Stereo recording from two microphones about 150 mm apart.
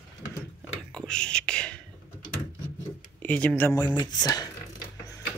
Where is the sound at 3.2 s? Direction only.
10° left (ahead or behind).